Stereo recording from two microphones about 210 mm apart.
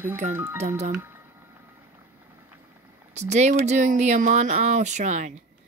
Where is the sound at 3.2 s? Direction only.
35° right (ahead or behind).